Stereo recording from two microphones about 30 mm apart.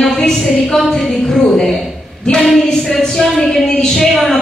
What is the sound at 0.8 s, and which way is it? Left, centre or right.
Speech, centre.